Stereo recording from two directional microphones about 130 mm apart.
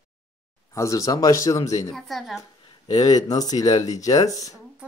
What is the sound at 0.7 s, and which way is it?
Speech, 25° left (ahead or behind).